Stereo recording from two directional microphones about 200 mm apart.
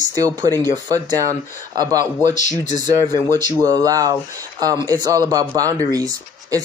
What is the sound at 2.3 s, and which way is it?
Speech, 35° left (ahead or behind).